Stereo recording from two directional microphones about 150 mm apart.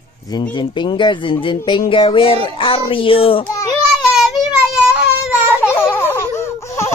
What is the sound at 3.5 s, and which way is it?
Babbling, 20° left (ahead or behind).